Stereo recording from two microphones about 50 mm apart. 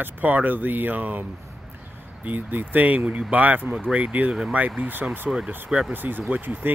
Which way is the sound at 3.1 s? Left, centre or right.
Right.